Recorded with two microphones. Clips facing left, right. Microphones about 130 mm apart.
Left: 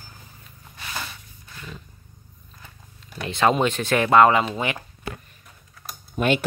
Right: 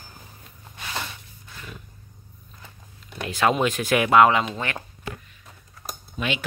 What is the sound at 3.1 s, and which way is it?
Speech, centre (ahead or behind).